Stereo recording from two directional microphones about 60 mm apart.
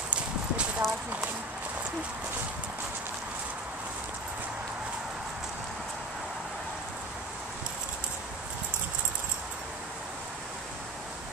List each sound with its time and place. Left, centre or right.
0.1 s clip-clop: centre